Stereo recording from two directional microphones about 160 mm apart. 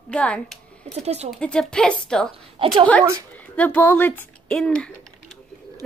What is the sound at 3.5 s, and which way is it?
A woman's voice, 10° left (ahead or behind).